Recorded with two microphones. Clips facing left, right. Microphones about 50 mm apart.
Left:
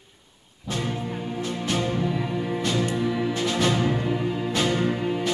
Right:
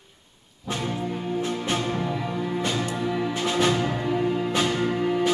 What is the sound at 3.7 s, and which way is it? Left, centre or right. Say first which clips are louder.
Music: even; centre.